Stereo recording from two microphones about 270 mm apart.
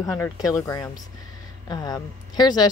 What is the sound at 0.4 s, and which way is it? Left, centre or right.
Speech, centre.